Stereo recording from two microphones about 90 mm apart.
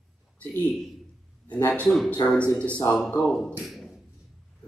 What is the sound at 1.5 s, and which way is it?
Speech, 15° left (ahead or behind).